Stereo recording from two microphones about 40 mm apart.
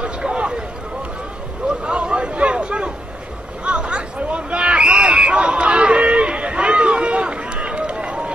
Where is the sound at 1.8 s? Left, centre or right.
Right.